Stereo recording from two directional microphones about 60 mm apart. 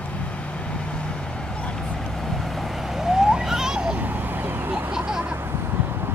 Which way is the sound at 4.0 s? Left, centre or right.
Right.